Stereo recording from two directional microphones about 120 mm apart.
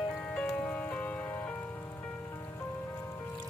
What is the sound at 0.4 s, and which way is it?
Music, 10° left (ahead or behind).